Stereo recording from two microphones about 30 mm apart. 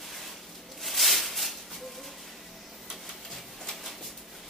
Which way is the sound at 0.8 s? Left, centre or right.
Centre.